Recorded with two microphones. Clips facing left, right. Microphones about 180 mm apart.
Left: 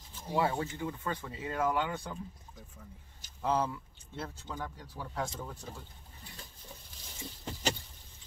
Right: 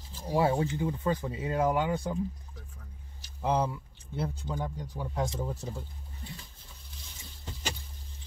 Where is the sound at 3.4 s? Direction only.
15° right (ahead or behind).